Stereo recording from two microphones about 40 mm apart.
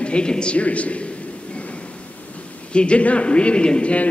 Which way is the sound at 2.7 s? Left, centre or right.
Left.